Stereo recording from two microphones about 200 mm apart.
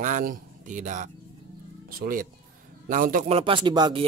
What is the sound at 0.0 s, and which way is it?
A man's voice, 40° right (ahead or behind).